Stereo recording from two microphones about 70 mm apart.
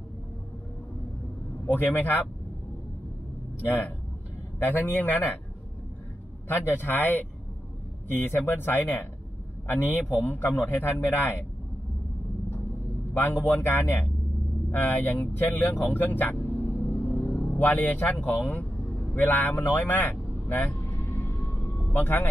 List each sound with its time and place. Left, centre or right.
1.7 s a man's voice: left
4.6 s a man's voice: left
6.4 s a man's voice: left
13.1 s a man's voice: left
14.7 s speech: left
17.0 s vehicle: left
19.2 s vehicle: left
21.7 s speech: left